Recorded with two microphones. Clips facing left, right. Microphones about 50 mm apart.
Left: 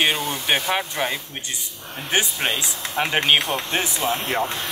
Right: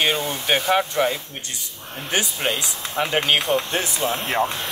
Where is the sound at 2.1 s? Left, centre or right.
Left.